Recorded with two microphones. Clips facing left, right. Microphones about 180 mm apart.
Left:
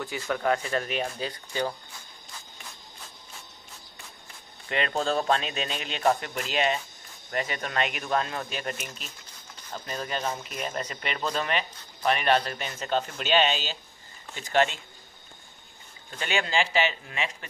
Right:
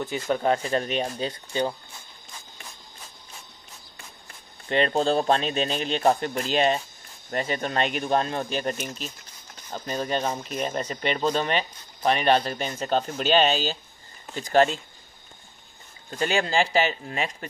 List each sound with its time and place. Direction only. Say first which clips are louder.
0.0 s speech: right 4 dB; 25° right (ahead or behind)
4.6 s speech: right 5 dB; 35° right (ahead or behind)
16.2 s speech: right 4 dB; 40° right (ahead or behind)